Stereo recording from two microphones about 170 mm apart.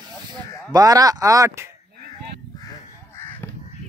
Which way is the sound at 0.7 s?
20° right (ahead or behind).